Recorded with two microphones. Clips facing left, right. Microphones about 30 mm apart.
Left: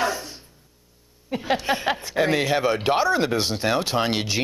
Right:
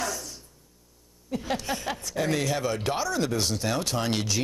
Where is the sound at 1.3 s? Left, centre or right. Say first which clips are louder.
Left 6 dB; left.